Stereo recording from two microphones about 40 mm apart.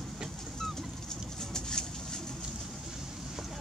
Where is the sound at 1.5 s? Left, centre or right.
Centre.